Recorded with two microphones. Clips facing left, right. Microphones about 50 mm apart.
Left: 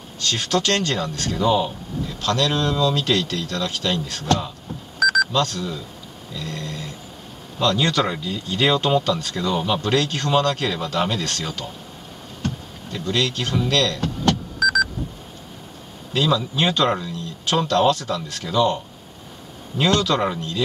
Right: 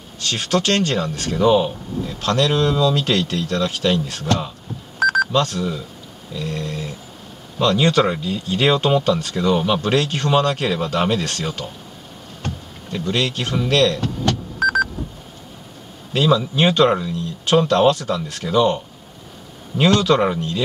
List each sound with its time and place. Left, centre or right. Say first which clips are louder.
0.2 s speech: right 1 dB; right
4.9 s telephone dialing: right 2 dB; right
6.3 s speech: right 5 dB; right
12.4 s a sound: left 2 dB; right
13.6 s speech: right 4 dB; right
14.0 s vehicle: even; left
14.6 s a sound: right 2 dB; right
16.1 s speech: right 3 dB; right
19.8 s speech: right 4 dB; right